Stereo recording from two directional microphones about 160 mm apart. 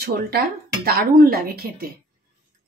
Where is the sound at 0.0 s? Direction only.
75° right (ahead or behind).